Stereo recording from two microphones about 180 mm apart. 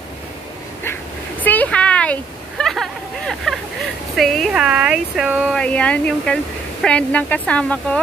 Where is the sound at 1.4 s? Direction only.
10° left (ahead or behind).